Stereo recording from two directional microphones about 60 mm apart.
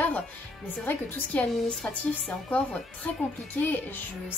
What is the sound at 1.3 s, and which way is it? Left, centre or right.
A woman's voice, centre.